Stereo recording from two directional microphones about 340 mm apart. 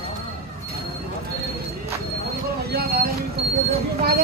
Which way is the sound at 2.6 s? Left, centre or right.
Right.